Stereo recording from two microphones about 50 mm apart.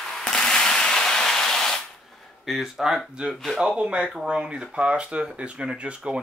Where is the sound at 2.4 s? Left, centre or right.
Centre.